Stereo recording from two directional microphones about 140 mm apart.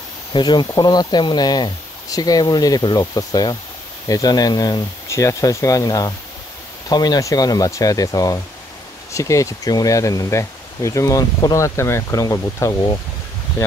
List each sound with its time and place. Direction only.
0.3 s speech: 30° left (ahead or behind)